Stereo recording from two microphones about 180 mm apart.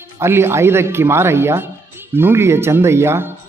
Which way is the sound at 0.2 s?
15° right (ahead or behind).